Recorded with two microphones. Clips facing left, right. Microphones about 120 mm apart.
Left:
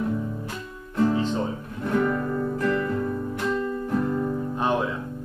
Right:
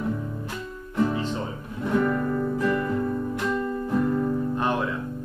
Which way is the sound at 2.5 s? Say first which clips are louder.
Even; 10° right (ahead or behind).